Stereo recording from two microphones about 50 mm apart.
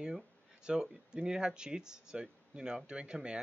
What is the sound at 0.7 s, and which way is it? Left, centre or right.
A man's voice, centre.